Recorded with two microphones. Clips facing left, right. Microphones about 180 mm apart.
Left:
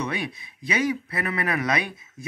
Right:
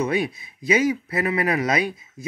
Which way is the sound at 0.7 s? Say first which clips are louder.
Right 5 dB; 20° right (ahead or behind).